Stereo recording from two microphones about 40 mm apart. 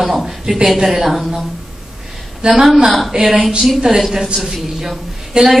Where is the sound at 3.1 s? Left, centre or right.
Right.